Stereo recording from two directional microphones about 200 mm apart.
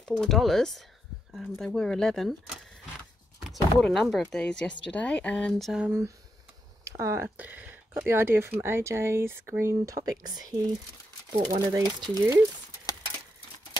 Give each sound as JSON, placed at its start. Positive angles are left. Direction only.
{"t": 0.0, "sound": "speech", "side_deg": 0}